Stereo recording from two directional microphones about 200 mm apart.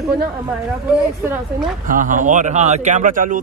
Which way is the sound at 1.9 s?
40° right (ahead or behind).